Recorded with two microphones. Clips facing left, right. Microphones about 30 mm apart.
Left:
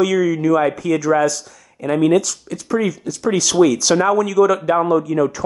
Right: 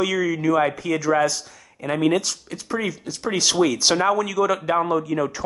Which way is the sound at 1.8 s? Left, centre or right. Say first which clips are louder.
Left 5 dB; centre.